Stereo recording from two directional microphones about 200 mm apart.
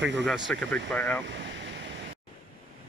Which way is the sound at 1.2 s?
65° right (ahead or behind).